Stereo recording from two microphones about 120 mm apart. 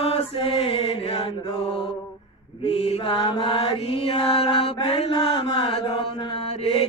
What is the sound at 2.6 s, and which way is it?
Mantra, 55° left (ahead or behind).